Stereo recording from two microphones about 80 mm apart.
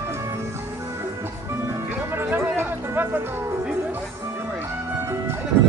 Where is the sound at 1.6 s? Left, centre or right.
Right.